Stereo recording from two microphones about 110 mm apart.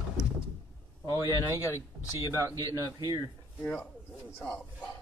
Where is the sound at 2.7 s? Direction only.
35° right (ahead or behind).